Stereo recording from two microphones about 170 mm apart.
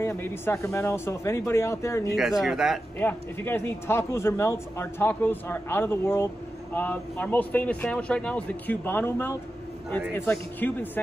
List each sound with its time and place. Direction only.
0.0 s a man's voice: 15° left (ahead or behind)
2.4 s speech: centre (ahead or behind)
3.0 s a man's voice: 10° left (ahead or behind)